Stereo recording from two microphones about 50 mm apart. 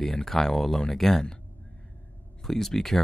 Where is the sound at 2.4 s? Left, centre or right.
Centre.